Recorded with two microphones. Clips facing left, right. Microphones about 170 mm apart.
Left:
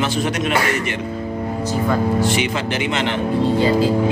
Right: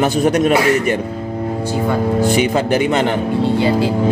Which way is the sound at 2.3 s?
40° right (ahead or behind).